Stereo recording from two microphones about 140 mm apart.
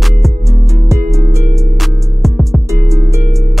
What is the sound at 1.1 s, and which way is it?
Music, centre (ahead or behind).